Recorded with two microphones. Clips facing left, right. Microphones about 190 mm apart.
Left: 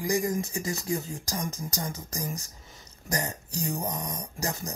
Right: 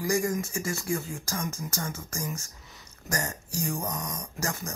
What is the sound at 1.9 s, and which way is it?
Speech, 35° left (ahead or behind).